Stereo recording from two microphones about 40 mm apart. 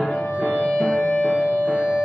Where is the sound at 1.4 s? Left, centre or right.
Left.